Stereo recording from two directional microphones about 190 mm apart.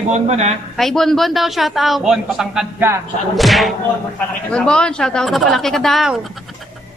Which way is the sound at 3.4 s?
Centre (ahead or behind).